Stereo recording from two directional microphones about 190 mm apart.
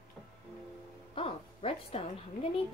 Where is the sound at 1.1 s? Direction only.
30° left (ahead or behind).